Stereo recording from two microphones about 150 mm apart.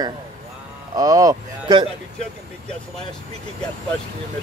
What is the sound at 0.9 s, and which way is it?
Speech, 25° right (ahead or behind).